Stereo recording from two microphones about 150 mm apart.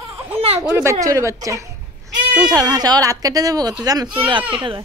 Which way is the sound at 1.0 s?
20° right (ahead or behind).